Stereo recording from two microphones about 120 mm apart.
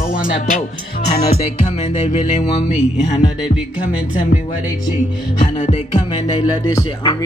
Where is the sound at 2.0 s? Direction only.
75° left (ahead or behind).